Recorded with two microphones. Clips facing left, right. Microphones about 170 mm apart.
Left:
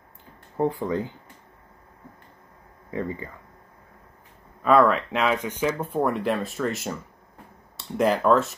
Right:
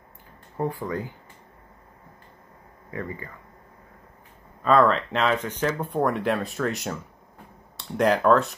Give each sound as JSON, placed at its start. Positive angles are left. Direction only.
{"t": 0.6, "sound": "speech", "side_deg": 25}
{"t": 2.9, "sound": "speech", "side_deg": 20}
{"t": 4.6, "sound": "speech", "side_deg": 10}